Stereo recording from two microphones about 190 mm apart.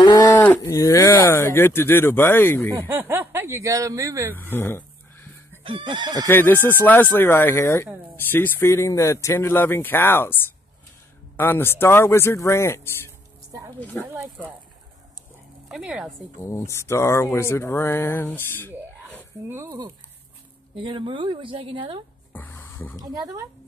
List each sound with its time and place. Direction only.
0.0 s cattle: 20° left (ahead or behind)
0.4 s speech: 15° left (ahead or behind)
2.9 s speech: 15° right (ahead or behind)
4.4 s a sound: 10° left (ahead or behind)
5.6 s speech: 25° right (ahead or behind)
6.2 s speech: 10° left (ahead or behind)
11.3 s speech: 10° left (ahead or behind)
15.7 s speech: 5° right (ahead or behind)
16.3 s speech: 15° left (ahead or behind)
19.5 s speech: 20° right (ahead or behind)
22.3 s music: 10° left (ahead or behind)
22.9 s speech: 20° right (ahead or behind)